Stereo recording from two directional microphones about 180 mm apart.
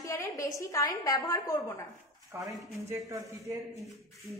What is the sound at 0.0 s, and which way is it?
A woman's voice, 15° left (ahead or behind).